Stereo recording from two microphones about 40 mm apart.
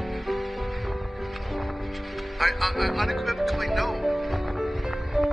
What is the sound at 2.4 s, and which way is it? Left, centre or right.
Music, centre.